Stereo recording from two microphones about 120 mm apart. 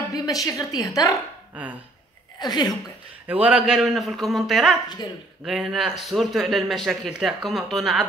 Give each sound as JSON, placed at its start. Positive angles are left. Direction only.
{"t": 0.1, "sound": "a woman's voice", "side_deg": 30}
{"t": 1.5, "sound": "speech", "side_deg": -15}
{"t": 2.3, "sound": "a woman's voice", "side_deg": 35}
{"t": 3.3, "sound": "speech", "side_deg": -10}